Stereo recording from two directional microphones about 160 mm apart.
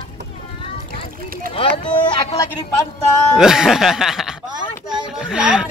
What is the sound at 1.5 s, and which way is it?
Speech, 30° left (ahead or behind).